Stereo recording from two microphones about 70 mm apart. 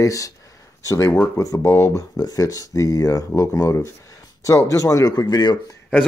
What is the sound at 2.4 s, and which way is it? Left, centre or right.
Speech, left.